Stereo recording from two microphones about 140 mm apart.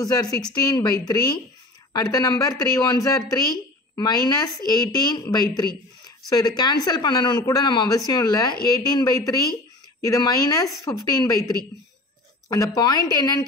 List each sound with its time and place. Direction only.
0.0 s a woman's voice: 25° left (ahead or behind)
12.4 s speech: 25° left (ahead or behind)